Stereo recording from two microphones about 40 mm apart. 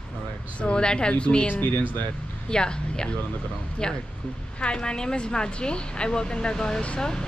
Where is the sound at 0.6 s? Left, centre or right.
Left.